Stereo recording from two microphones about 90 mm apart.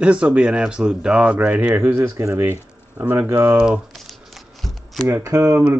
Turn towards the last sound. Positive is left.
turn(degrees=-30)  # may be behind; listen again after turning